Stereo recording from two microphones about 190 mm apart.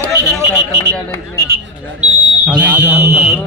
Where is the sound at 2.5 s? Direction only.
10° right (ahead or behind).